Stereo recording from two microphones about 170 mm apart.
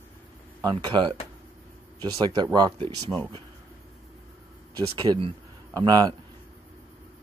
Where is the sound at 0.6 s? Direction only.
25° right (ahead or behind).